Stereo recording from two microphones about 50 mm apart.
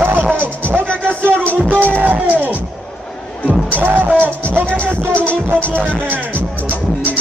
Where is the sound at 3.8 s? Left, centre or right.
Right.